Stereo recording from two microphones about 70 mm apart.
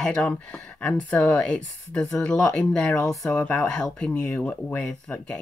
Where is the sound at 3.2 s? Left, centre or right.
Left.